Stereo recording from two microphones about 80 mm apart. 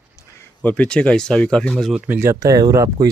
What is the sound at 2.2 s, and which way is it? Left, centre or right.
Speech, right.